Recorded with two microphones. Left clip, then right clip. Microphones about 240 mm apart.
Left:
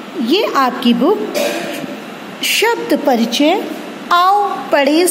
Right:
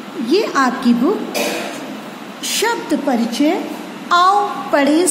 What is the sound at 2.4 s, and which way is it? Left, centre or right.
A woman's voice, left.